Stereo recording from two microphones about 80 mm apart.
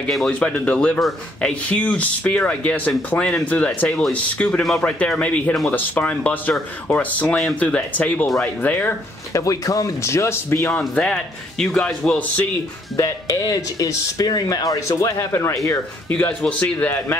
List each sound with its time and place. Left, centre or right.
0.3 s a man's voice: centre
9.3 s speech: left
11.0 s speech: centre
12.9 s speech: left
16.1 s a man's voice: centre